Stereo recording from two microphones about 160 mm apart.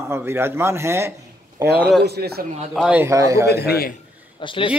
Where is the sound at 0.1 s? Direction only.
15° right (ahead or behind).